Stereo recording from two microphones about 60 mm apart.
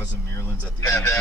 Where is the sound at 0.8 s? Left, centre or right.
Left.